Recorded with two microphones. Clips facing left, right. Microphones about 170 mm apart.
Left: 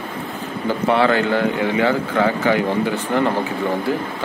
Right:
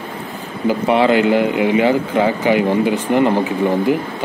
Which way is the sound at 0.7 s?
15° right (ahead or behind).